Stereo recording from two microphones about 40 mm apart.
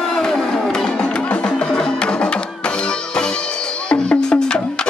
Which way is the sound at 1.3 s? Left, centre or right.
Left.